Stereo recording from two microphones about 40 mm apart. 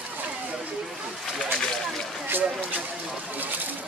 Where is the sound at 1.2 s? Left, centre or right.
Centre.